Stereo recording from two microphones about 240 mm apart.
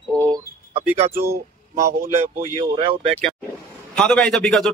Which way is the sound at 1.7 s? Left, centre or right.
Right.